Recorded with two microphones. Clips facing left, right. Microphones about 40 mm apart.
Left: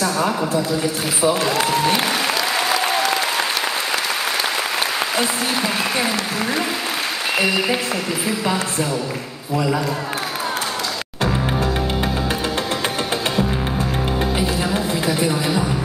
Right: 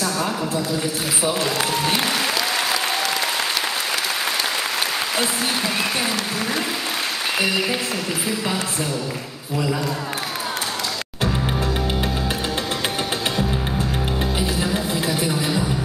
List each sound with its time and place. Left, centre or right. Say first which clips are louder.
0.0 s a sound: left 3 dB; centre
1.2 s speech: left 5 dB; centre
2.7 s applause: left 4 dB; centre
11.2 s music: left 2 dB; centre
14.4 s music: left 2 dB; centre